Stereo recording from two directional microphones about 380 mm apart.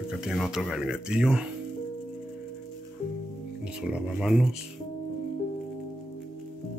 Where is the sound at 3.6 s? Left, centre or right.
Centre.